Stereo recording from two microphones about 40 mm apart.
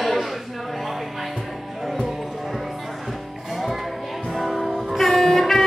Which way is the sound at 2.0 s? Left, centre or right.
Centre.